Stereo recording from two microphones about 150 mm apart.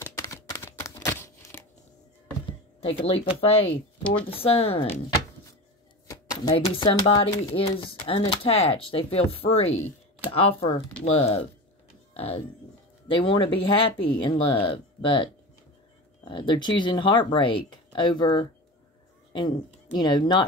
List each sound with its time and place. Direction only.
0.0 s a sound: 20° left (ahead or behind)
2.8 s speech: 35° left (ahead or behind)
4.0 s speech: 10° left (ahead or behind)
4.3 s speech: 40° left (ahead or behind)
6.0 s a sound: 25° left (ahead or behind)
6.5 s speech: 35° left (ahead or behind)
16.3 s speech: 30° left (ahead or behind)